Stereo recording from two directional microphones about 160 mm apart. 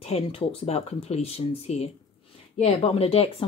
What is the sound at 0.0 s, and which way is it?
A woman's voice, 40° left (ahead or behind).